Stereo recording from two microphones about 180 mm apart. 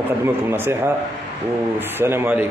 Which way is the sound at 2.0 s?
15° right (ahead or behind).